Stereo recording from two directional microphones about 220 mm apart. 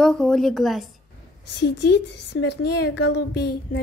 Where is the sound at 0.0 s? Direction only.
Centre (ahead or behind).